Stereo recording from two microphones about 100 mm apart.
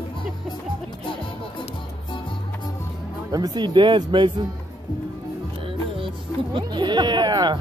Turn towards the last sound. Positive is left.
turn(degrees=-45)  # may be behind; listen again after turning